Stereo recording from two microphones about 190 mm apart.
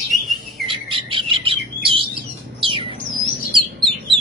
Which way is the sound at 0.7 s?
30° right (ahead or behind).